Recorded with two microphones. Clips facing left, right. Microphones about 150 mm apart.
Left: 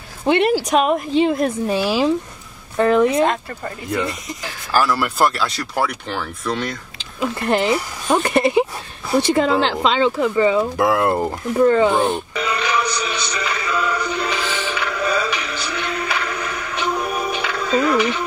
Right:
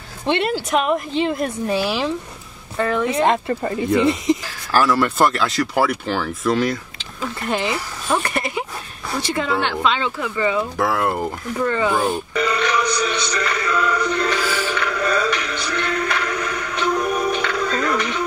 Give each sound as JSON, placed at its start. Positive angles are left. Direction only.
{"t": 0.7, "sound": "a woman's voice", "side_deg": 20}
{"t": 1.9, "sound": "speech", "side_deg": 10}
{"t": 2.8, "sound": "a woman's voice", "side_deg": 25}
{"t": 3.2, "sound": "speech", "side_deg": -20}
{"t": 4.7, "sound": "speech", "side_deg": 5}
{"t": 7.2, "sound": "speech", "side_deg": 10}
{"t": 8.2, "sound": "speech", "side_deg": 25}
{"t": 9.1, "sound": "speech", "side_deg": 10}
{"t": 9.8, "sound": "a woman's voice", "side_deg": 30}
{"t": 10.6, "sound": "a woman's voice", "side_deg": 15}
{"t": 11.5, "sound": "speech", "side_deg": 10}
{"t": 12.0, "sound": "music", "side_deg": 0}
{"t": 14.4, "sound": "music", "side_deg": -10}
{"t": 14.7, "sound": "music", "side_deg": 5}